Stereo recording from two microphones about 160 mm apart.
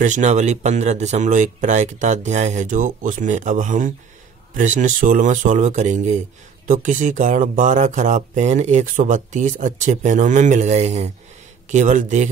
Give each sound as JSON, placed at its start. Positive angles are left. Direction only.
{"t": 0.0, "sound": "speech", "side_deg": -50}